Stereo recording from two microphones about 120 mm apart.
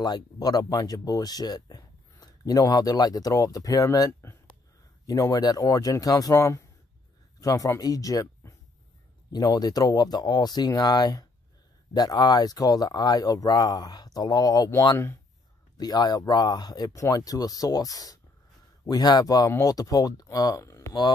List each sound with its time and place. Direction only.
0.0 s speech: 35° left (ahead or behind)